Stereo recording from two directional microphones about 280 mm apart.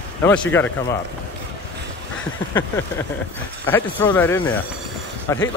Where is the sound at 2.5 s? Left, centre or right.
Centre.